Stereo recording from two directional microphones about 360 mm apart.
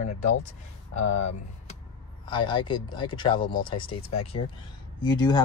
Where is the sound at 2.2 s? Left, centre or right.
Centre.